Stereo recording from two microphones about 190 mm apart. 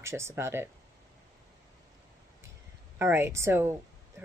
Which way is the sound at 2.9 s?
10° right (ahead or behind).